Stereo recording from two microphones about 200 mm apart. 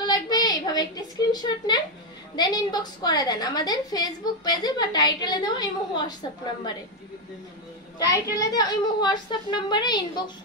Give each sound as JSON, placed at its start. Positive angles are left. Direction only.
{"t": 0.0, "sound": "a sound", "side_deg": 20}
{"t": 1.3, "sound": "a woman's voice", "side_deg": 20}
{"t": 8.0, "sound": "a woman's voice", "side_deg": 15}